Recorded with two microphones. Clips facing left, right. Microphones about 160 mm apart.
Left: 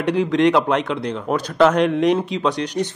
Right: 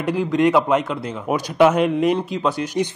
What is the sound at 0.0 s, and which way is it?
A man's voice, centre (ahead or behind).